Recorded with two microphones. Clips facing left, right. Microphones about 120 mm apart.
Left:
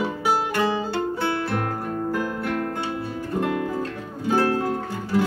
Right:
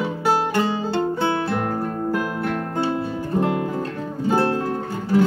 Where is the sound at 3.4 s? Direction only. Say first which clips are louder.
Right 2 dB; 25° right (ahead or behind).